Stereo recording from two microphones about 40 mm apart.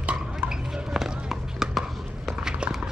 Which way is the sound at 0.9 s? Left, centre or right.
Centre.